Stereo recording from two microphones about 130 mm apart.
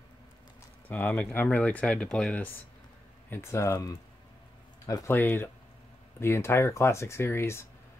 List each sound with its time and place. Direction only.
0.8 s speech: 15° left (ahead or behind)
3.3 s speech: 20° left (ahead or behind)